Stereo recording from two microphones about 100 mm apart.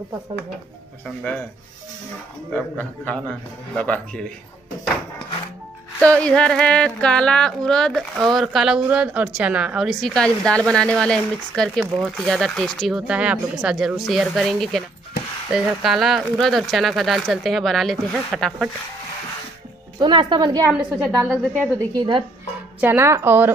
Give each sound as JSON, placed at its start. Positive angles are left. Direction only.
{"t": 1.0, "sound": "speech", "side_deg": 15}
{"t": 2.5, "sound": "speech", "side_deg": 10}
{"t": 6.0, "sound": "speech", "side_deg": 10}
{"t": 13.0, "sound": "speech", "side_deg": -10}
{"t": 20.0, "sound": "a woman's voice", "side_deg": -50}
{"t": 20.7, "sound": "a woman's voice", "side_deg": -15}
{"t": 21.7, "sound": "a woman's voice", "side_deg": -40}
{"t": 22.8, "sound": "speech", "side_deg": -25}